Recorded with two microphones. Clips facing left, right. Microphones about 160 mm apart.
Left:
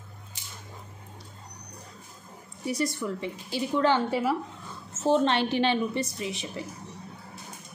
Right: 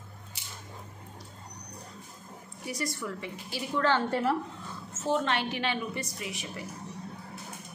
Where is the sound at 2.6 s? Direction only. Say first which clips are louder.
Left 6 dB; 25° left (ahead or behind); by 4.4 s 5° left (ahead or behind).